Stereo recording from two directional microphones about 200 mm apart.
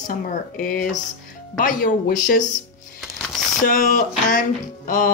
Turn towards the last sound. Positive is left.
turn(degrees=40)  # may be behind; listen again after turning